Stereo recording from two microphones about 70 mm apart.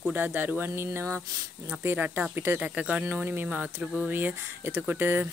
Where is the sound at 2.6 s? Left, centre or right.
Centre.